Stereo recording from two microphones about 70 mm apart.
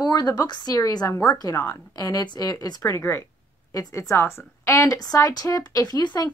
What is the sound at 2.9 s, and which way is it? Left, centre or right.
A woman's voice, left.